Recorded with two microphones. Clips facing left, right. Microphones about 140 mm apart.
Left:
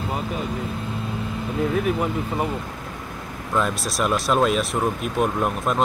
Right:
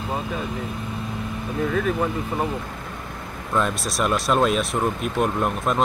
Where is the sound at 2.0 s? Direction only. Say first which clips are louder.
Even; 10° left (ahead or behind).